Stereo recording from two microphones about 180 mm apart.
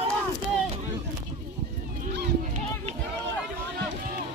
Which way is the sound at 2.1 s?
70° right (ahead or behind).